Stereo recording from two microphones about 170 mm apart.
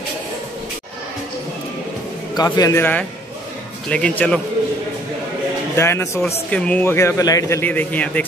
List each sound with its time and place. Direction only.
2.3 s speech: 20° left (ahead or behind)
5.8 s speech: 15° left (ahead or behind)